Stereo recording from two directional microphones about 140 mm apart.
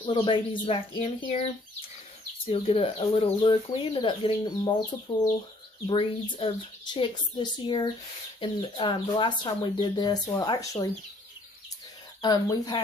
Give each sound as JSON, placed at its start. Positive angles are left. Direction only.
{"t": 0.0, "sound": "speech", "side_deg": 35}
{"t": 2.4, "sound": "speech", "side_deg": 40}
{"t": 12.2, "sound": "speech", "side_deg": 30}